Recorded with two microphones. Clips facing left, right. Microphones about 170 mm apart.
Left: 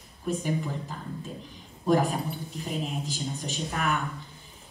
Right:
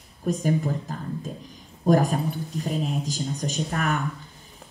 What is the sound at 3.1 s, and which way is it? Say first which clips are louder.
Speech: right 4 dB; 40° right (ahead or behind).